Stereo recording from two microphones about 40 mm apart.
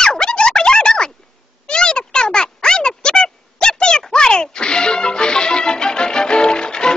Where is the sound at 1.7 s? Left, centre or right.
Left.